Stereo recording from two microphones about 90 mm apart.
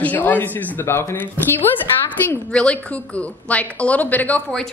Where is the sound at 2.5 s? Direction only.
10° left (ahead or behind).